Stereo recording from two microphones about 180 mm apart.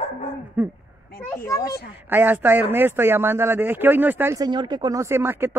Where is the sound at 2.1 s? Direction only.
10° right (ahead or behind).